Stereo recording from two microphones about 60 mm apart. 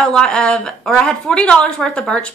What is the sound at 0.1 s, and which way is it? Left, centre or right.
A woman's voice, centre.